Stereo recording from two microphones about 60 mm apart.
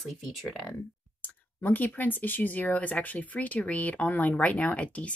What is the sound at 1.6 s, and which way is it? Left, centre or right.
Speech, left.